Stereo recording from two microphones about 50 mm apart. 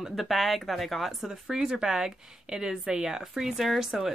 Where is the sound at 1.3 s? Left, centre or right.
Centre.